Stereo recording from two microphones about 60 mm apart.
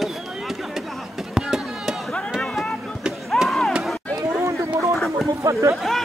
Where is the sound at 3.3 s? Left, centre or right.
Centre.